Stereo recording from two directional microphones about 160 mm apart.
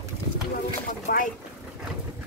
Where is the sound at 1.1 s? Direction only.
60° left (ahead or behind).